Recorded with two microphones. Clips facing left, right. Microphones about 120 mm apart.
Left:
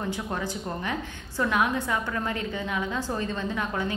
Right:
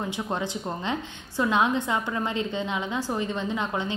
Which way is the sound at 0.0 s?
15° right (ahead or behind).